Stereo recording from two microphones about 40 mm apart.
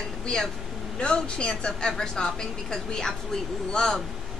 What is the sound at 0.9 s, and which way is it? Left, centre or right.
Speech, left.